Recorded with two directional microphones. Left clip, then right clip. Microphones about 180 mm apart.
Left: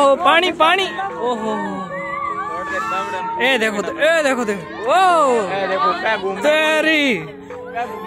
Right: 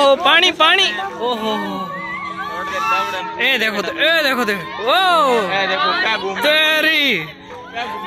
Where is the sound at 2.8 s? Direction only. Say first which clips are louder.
Right 4 dB; 55° left (ahead or behind).